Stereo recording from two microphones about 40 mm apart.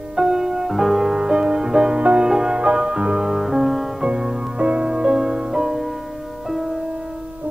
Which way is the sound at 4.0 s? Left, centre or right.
Centre.